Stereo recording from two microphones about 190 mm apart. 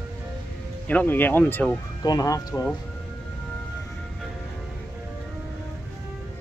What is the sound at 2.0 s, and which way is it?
Speech, 20° left (ahead or behind).